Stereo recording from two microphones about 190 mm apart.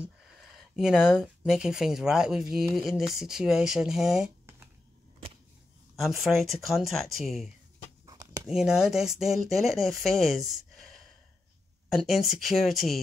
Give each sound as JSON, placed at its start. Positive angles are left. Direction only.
{"t": 0.6, "sound": "speech", "side_deg": -5}
{"t": 5.9, "sound": "speech", "side_deg": 0}
{"t": 8.0, "sound": "a sound", "side_deg": -20}
{"t": 8.5, "sound": "speech", "side_deg": -5}